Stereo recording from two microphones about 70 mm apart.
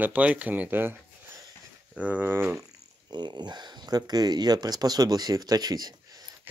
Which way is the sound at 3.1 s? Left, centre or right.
Right.